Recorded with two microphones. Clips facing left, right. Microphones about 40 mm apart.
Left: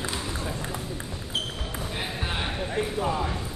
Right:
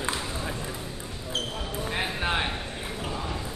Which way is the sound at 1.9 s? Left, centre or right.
Right.